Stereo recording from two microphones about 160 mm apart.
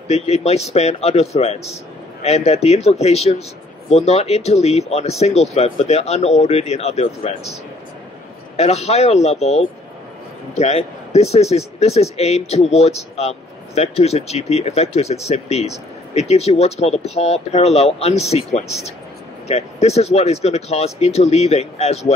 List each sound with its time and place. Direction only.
0.1 s speech: 40° left (ahead or behind)
8.5 s speech: 40° left (ahead or behind)